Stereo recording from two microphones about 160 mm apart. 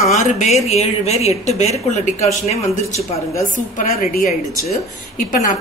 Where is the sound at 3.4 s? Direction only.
55° left (ahead or behind).